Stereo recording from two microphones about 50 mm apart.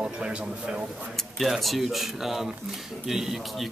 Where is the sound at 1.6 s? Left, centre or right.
Centre.